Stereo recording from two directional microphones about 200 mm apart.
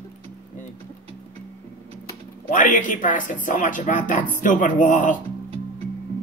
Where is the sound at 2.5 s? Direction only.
40° left (ahead or behind).